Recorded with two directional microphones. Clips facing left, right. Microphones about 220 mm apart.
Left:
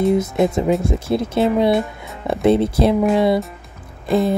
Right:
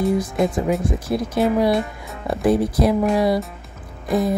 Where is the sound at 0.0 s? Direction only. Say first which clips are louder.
Left 3 dB; 20° left (ahead or behind).